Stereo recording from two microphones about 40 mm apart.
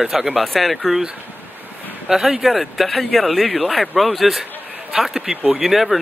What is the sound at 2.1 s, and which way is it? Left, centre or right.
Speech, centre.